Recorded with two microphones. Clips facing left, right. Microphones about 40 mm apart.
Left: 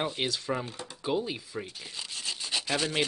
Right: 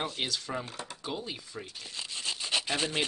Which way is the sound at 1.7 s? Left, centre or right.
Centre.